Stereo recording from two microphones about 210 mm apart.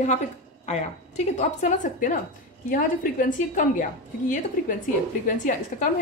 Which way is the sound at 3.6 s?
35° left (ahead or behind).